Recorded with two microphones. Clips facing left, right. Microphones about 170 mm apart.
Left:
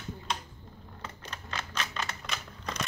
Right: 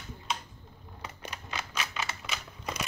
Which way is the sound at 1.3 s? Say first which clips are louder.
Even; 10° right (ahead or behind).